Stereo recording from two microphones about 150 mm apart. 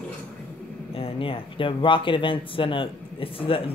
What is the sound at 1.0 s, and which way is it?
Speech, 40° left (ahead or behind).